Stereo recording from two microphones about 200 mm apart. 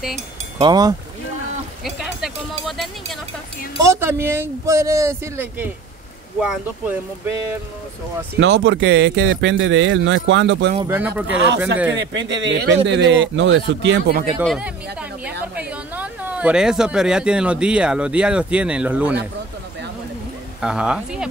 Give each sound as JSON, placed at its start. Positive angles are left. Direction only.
{"t": 0.6, "sound": "speech", "side_deg": -20}
{"t": 2.0, "sound": "music", "side_deg": 0}
{"t": 3.7, "sound": "speech", "side_deg": -15}
{"t": 8.4, "sound": "speech", "side_deg": -65}
{"t": 10.9, "sound": "speech", "side_deg": -10}
{"t": 11.2, "sound": "a man's voice", "side_deg": -65}
{"t": 14.4, "sound": "a sound", "side_deg": -5}
{"t": 15.5, "sound": "speech", "side_deg": -5}
{"t": 20.6, "sound": "speech", "side_deg": -5}